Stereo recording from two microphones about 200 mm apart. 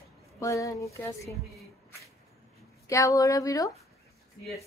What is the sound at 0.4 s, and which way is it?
Speech, 15° left (ahead or behind).